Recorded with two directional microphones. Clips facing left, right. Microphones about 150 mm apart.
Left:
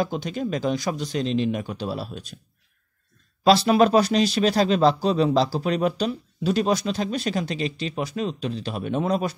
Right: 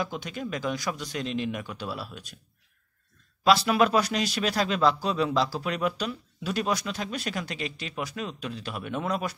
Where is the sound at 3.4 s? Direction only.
30° left (ahead or behind).